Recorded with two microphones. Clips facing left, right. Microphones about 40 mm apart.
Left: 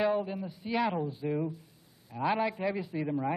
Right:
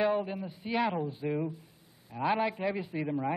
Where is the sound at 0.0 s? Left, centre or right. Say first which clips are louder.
Even; centre.